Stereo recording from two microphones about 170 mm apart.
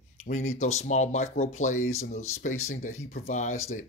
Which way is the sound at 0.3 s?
45° left (ahead or behind).